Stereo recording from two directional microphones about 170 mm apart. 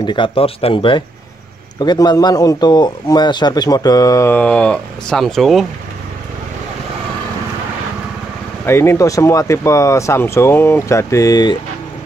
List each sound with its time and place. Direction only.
0.0 s a man's voice: 30° left (ahead or behind); by 5.7 s centre (ahead or behind)
8.6 s speech: 15° left (ahead or behind)